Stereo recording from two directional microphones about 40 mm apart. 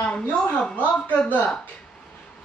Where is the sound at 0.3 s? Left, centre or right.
Left.